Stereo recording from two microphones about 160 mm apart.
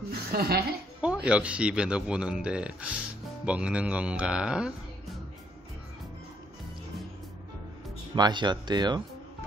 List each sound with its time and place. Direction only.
0.1 s speech: 75° right (ahead or behind)
1.2 s speech: 5° right (ahead or behind)
8.1 s speech: 30° right (ahead or behind)